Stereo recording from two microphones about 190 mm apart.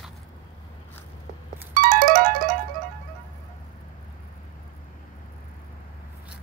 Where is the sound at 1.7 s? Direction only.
45° right (ahead or behind).